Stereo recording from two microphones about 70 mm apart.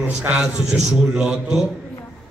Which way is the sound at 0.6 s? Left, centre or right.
Centre.